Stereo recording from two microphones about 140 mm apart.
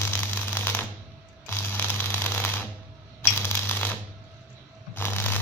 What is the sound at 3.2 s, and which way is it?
Typewriter, 15° left (ahead or behind).